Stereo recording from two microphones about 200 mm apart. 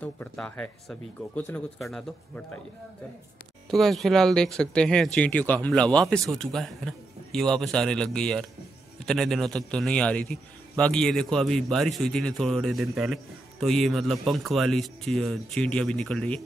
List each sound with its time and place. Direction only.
0.0 s speech: 5° left (ahead or behind)
3.7 s a man's voice: centre (ahead or behind)